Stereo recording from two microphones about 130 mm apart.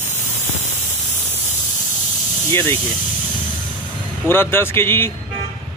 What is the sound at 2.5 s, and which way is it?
Speech, 20° left (ahead or behind).